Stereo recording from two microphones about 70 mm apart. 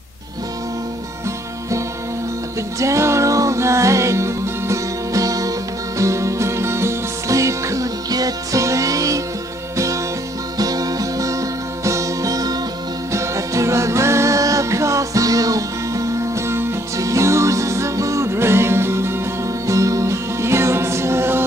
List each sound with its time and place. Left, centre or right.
2.8 s music: right
10.6 s music: right
13.1 s music: right